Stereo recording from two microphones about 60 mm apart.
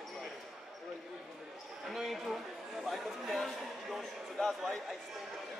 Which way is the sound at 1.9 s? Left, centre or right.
Centre.